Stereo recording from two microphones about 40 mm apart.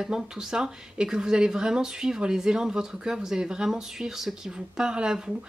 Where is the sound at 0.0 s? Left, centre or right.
Centre.